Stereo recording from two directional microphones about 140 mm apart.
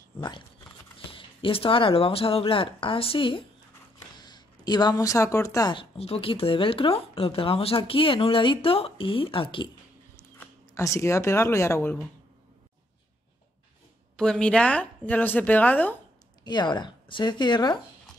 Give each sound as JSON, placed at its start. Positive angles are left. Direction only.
{"t": 0.9, "sound": "speech", "side_deg": 40}
{"t": 5.8, "sound": "speech", "side_deg": 45}
{"t": 10.7, "sound": "speech", "side_deg": 20}
{"t": 14.1, "sound": "a woman's voice", "side_deg": 5}
{"t": 16.4, "sound": "speech", "side_deg": 30}